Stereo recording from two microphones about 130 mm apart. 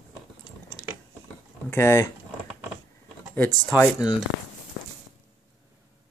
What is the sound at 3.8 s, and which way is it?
Speech, 30° left (ahead or behind).